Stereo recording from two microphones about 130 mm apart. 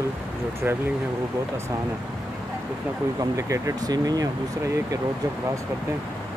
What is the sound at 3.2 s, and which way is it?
Speech, 25° right (ahead or behind).